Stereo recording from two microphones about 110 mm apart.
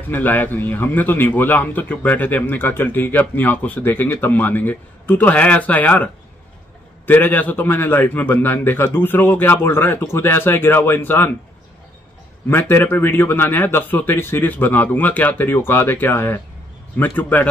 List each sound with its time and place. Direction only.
0.1 s a man's voice: 15° left (ahead or behind)
7.1 s a man's voice: 15° left (ahead or behind)
12.4 s a man's voice: 20° left (ahead or behind)